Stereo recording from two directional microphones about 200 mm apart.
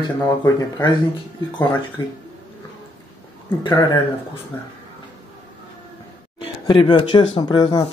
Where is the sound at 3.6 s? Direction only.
20° left (ahead or behind).